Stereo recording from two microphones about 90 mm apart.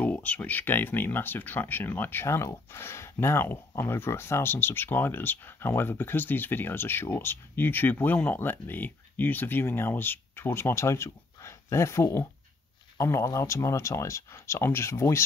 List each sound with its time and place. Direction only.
0.0 s speech: 15° left (ahead or behind)